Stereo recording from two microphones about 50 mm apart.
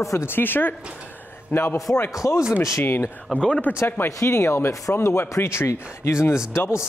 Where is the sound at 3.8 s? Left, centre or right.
Left.